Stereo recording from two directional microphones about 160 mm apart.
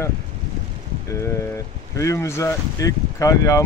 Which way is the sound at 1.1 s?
15° left (ahead or behind).